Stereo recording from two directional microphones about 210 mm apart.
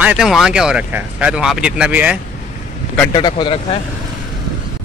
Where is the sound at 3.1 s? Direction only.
20° left (ahead or behind).